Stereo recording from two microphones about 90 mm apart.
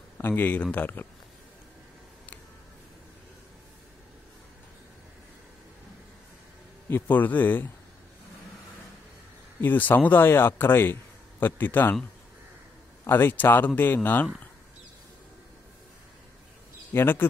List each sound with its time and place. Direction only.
0.2 s speech: 20° left (ahead or behind)
6.9 s speech: 20° left (ahead or behind)
9.6 s speech: 20° left (ahead or behind)
13.0 s speech: 25° left (ahead or behind)
16.9 s speech: 25° left (ahead or behind)